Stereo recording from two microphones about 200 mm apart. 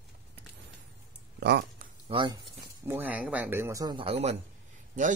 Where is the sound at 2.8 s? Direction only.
10° right (ahead or behind); by 4.4 s 30° right (ahead or behind).